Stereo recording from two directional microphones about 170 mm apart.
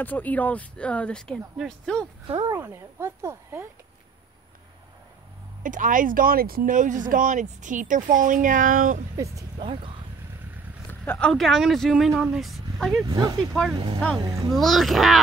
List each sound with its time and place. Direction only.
0.0 s speech: 10° left (ahead or behind)
2.4 s speech: 15° right (ahead or behind)
5.6 s speech: 50° right (ahead or behind)
9.1 s speech: 20° right (ahead or behind)
9.6 s speech: 30° right (ahead or behind)
10.9 s speech: 10° left (ahead or behind)